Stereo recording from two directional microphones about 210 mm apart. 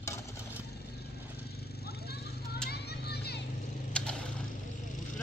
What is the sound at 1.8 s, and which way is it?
Vehicle, 50° left (ahead or behind).